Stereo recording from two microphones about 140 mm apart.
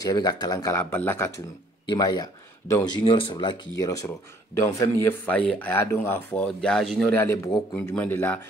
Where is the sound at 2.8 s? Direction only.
35° left (ahead or behind); by 6.5 s 15° left (ahead or behind).